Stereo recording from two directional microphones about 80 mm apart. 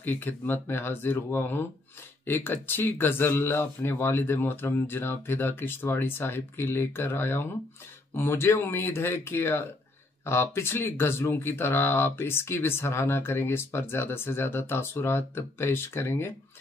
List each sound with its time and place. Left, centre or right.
0.0 s speech: left